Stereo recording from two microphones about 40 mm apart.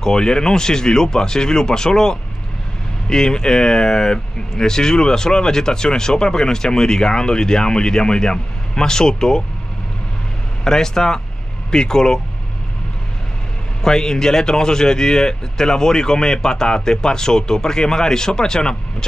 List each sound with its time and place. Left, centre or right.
0.0 s speech: centre
10.6 s speech: centre
13.8 s speech: centre